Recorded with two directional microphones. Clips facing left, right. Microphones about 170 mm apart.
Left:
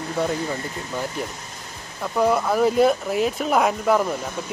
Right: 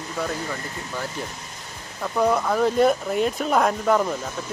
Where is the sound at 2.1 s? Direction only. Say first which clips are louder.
Left 1 dB; 5° left (ahead or behind).